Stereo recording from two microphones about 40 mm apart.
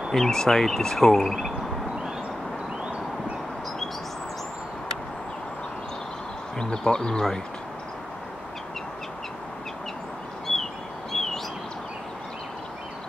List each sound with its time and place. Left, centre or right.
0.1 s speech: centre
6.6 s speech: centre
11.1 s bird: centre